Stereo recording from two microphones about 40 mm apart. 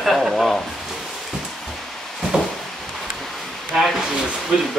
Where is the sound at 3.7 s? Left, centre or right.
Right.